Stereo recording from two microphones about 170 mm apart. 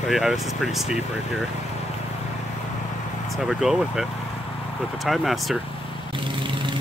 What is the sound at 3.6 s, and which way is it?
Speech, centre (ahead or behind).